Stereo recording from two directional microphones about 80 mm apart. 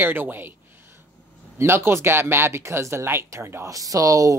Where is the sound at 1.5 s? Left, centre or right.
Right.